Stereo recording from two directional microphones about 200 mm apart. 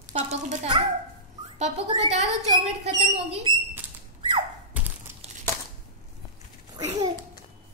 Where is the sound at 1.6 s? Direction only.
35° right (ahead or behind).